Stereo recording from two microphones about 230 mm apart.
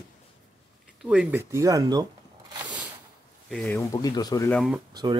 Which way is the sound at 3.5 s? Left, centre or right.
Centre.